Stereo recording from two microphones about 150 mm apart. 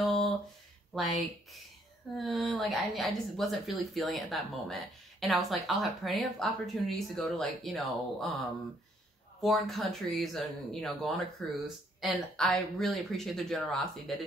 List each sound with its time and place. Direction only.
0.0 s a sound: centre (ahead or behind)
0.9 s a woman's voice: centre (ahead or behind)
9.4 s a woman's voice: centre (ahead or behind)